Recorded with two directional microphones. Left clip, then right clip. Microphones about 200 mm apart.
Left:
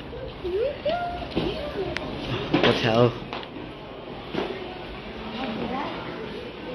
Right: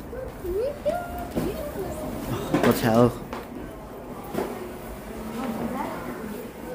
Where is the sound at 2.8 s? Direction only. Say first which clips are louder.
Even; 30° right (ahead or behind).